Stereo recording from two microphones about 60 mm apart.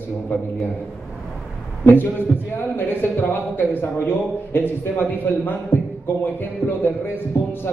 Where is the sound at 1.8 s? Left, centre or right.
Left.